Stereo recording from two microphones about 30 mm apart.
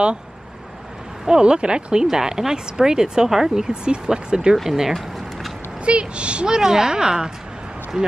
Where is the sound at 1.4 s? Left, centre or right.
Right.